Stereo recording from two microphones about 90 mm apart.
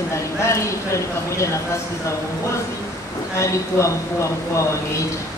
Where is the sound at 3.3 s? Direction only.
35° left (ahead or behind).